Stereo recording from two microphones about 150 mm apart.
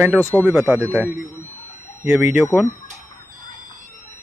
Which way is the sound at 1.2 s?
15° left (ahead or behind).